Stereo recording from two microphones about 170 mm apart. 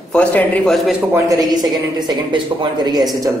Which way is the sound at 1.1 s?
20° right (ahead or behind).